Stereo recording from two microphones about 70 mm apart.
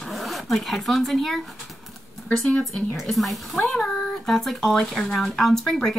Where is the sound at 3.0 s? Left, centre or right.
Centre.